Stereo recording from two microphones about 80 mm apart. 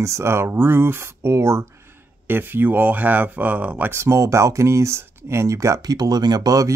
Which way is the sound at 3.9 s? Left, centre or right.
Right.